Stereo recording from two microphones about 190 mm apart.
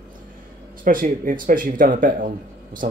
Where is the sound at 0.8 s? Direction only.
45° right (ahead or behind).